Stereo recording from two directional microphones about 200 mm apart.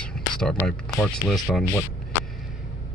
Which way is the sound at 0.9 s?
15° left (ahead or behind).